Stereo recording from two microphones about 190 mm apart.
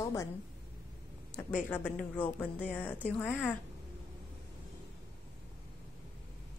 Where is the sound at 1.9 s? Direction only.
10° left (ahead or behind).